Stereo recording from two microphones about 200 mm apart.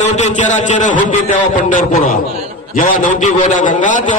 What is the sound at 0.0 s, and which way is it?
A man's voice, 35° left (ahead or behind).